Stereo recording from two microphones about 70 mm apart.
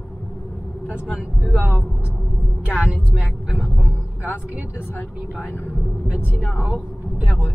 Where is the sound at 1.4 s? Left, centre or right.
Centre.